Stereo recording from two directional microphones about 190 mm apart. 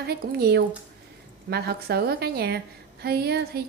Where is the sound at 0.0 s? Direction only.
60° right (ahead or behind).